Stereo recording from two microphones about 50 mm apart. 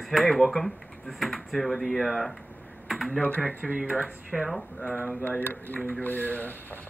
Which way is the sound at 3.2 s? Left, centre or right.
Left.